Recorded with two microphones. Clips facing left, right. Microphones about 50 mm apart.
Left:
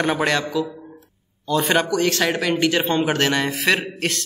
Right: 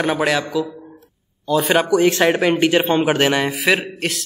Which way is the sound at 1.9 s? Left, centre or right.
Centre.